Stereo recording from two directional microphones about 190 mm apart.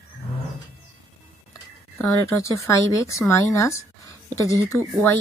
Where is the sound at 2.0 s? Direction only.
15° left (ahead or behind).